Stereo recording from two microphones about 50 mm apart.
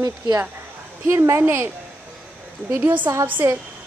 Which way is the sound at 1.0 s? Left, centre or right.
Right.